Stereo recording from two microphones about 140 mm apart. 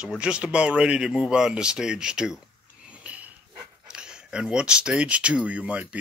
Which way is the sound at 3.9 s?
5° right (ahead or behind).